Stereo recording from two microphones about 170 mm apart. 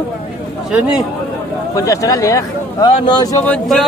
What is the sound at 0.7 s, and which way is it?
Speech, 5° right (ahead or behind).